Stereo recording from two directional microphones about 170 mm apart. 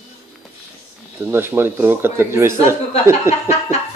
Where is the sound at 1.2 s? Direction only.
15° right (ahead or behind).